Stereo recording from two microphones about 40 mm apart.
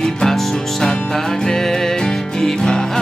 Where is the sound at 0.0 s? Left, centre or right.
Centre.